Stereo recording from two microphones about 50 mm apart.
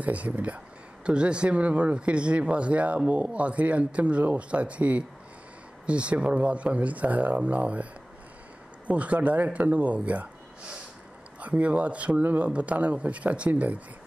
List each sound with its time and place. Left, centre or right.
0.0 s speech: right
11.3 s speech: right